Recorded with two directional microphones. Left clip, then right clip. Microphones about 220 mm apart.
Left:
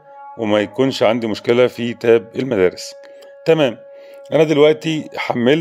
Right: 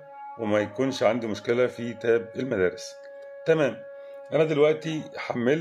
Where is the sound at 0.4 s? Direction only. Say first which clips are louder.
Left 9 dB; 40° left (ahead or behind).